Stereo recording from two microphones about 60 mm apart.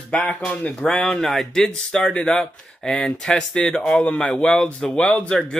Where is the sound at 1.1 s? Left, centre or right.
Centre; by 5.4 s left.